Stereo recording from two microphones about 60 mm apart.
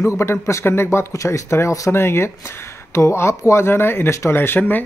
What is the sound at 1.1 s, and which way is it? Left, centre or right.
Speech, left.